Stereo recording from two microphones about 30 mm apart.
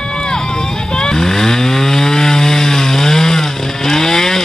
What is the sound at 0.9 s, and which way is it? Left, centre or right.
Chainsaw, left.